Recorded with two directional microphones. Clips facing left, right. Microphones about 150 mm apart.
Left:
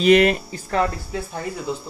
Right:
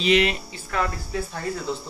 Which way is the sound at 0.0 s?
50° left (ahead or behind).